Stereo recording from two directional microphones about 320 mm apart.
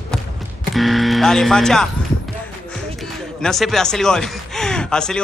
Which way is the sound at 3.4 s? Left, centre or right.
Centre.